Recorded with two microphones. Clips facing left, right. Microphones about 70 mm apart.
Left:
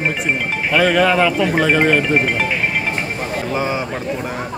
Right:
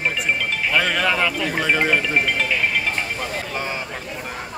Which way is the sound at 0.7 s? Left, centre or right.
Centre.